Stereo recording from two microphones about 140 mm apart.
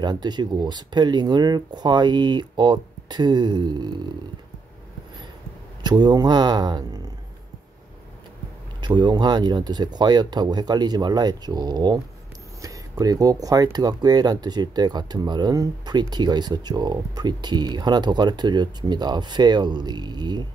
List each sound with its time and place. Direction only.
0.0 s speech: 30° right (ahead or behind)
5.9 s speech: 30° right (ahead or behind)
8.8 s speech: 30° right (ahead or behind)